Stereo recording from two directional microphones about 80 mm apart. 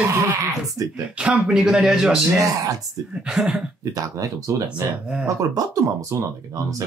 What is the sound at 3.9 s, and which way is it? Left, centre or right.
Speech, right.